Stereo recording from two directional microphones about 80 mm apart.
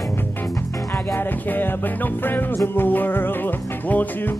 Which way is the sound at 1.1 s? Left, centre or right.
Left.